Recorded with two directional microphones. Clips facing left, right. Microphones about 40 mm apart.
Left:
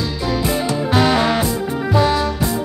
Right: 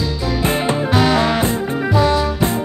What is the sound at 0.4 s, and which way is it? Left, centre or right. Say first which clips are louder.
Music: right 3 dB; right.